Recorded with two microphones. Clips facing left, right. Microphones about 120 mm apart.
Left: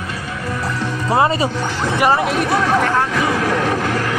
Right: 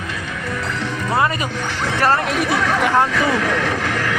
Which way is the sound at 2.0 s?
15° left (ahead or behind).